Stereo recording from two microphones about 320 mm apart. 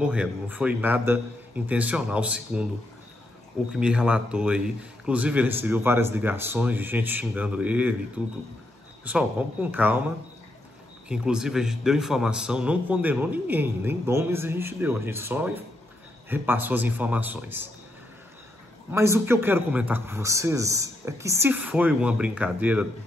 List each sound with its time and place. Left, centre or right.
0.0 s a man's voice: centre
3.7 s a man's voice: centre
11.1 s a man's voice: centre
18.9 s a man's voice: centre